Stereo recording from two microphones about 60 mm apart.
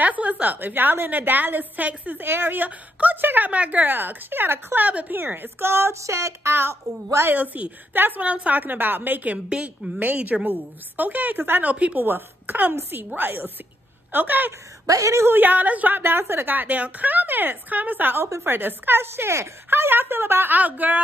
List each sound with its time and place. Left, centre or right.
0.0 s a woman's voice: right
2.2 s a woman's voice: right
4.8 s a woman's voice: right
7.2 s a woman's voice: right
11.7 s a woman's voice: centre
12.0 s a woman's voice: right
14.9 s a woman's voice: right
15.1 s a woman's voice: right
16.0 s a woman's voice: right
20.5 s a woman's voice: right